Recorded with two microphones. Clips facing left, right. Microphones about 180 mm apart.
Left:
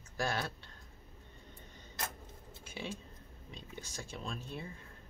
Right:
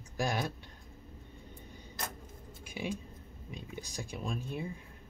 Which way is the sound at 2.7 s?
15° right (ahead or behind).